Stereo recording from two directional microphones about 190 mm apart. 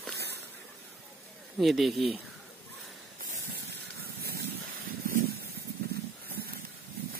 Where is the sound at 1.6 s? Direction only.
Centre (ahead or behind).